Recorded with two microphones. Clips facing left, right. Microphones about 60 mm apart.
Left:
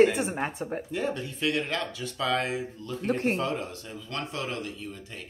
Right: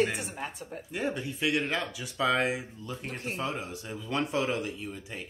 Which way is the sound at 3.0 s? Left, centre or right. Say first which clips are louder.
Left 12 dB; left.